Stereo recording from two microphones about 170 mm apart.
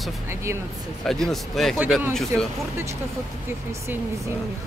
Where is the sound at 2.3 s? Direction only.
15° right (ahead or behind).